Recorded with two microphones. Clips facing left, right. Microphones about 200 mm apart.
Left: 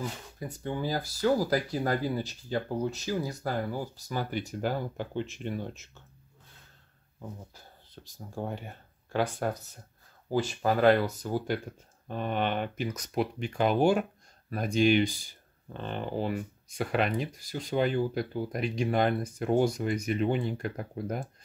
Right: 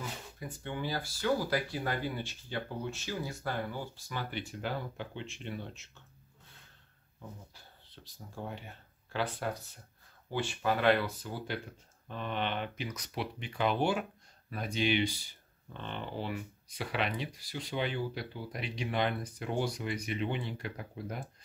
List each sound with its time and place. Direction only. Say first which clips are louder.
0.4 s speech: left 6 dB; 40° left (ahead or behind)
7.2 s speech: left 6 dB; 45° left (ahead or behind)